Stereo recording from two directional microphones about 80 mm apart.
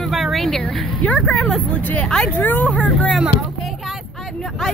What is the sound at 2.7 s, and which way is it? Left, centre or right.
Speech, centre.